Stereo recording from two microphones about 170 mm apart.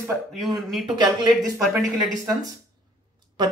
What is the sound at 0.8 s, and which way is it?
Speech, 25° right (ahead or behind).